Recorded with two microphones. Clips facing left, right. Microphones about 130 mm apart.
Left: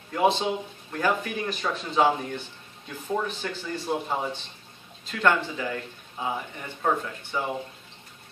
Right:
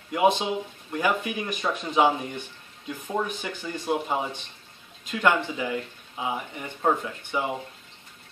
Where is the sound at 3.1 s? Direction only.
15° right (ahead or behind).